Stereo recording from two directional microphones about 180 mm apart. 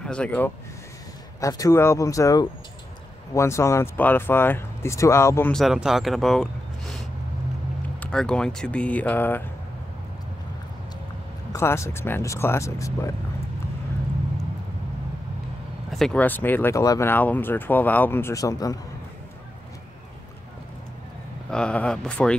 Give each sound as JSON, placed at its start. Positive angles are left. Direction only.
{"t": 0.0, "sound": "speech", "side_deg": 5}
{"t": 1.4, "sound": "speech", "side_deg": 20}
{"t": 5.5, "sound": "speech", "side_deg": 0}
{"t": 8.0, "sound": "speech", "side_deg": 5}
{"t": 11.5, "sound": "speech", "side_deg": 15}
{"t": 15.9, "sound": "speech", "side_deg": 5}
{"t": 21.5, "sound": "speech", "side_deg": 5}